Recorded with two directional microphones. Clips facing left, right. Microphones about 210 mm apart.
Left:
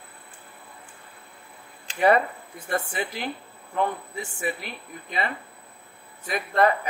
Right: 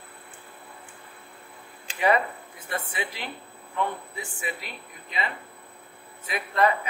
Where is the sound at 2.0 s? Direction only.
45° left (ahead or behind).